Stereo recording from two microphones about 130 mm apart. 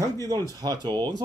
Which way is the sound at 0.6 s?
35° right (ahead or behind).